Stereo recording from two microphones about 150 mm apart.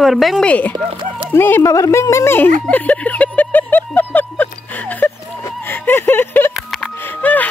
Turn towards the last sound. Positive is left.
turn(degrees=10)  # may be behind; listen again after turning